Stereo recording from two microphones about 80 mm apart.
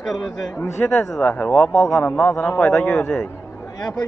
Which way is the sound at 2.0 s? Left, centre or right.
Centre.